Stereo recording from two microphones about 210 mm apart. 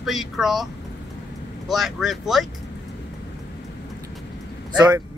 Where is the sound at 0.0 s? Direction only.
Centre (ahead or behind).